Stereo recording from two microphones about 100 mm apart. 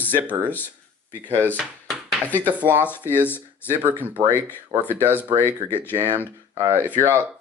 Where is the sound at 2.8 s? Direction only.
20° left (ahead or behind).